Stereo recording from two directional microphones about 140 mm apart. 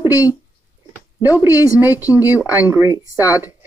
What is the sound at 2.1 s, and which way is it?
Speech, 10° right (ahead or behind).